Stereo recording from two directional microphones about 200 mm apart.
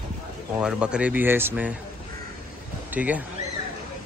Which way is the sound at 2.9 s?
10° right (ahead or behind).